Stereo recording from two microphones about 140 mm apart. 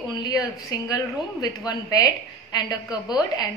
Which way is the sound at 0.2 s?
30° left (ahead or behind).